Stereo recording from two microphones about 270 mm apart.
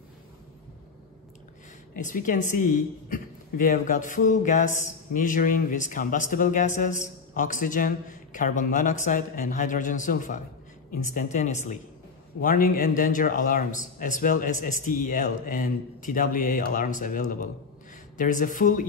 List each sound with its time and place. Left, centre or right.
2.0 s a man's voice: left